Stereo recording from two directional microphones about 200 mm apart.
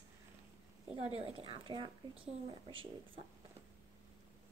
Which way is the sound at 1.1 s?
30° right (ahead or behind).